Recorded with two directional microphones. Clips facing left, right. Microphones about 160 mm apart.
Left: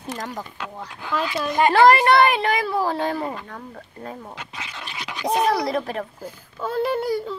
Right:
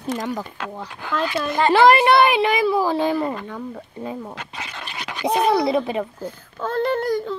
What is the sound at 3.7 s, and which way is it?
Speech, 10° right (ahead or behind).